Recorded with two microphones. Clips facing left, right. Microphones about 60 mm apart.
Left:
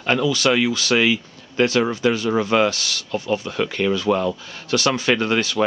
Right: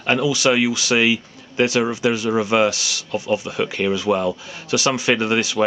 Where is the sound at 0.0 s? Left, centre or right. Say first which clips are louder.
Right 1 dB; centre.